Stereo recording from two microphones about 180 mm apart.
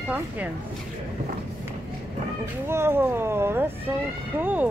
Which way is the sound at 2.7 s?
15° right (ahead or behind).